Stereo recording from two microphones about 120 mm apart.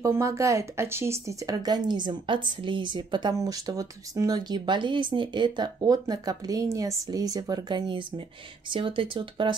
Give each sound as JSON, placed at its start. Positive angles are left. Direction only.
{"t": 0.0, "sound": "speech", "side_deg": -25}